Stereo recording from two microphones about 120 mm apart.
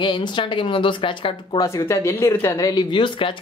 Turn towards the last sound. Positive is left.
turn(degrees=45)  # may be behind; listen again after turning